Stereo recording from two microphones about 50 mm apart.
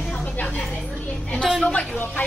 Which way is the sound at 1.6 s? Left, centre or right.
Left.